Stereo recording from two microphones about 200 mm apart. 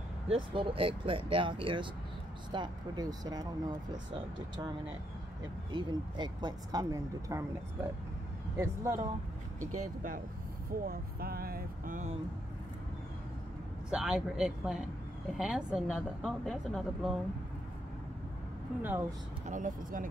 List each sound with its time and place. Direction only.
0.3 s speech: 25° right (ahead or behind)
5.7 s speech: 25° right (ahead or behind)
8.5 s speech: 15° right (ahead or behind)
9.6 s speech: 90° right
10.7 s speech: 45° right (ahead or behind)
13.8 s speech: 5° right (ahead or behind)
18.8 s speech: 10° right (ahead or behind)
19.4 s speech: 40° right (ahead or behind)